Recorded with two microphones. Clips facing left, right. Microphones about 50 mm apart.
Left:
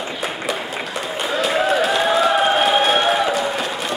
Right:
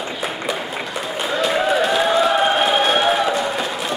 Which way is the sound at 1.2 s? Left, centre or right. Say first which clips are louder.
Even; centre.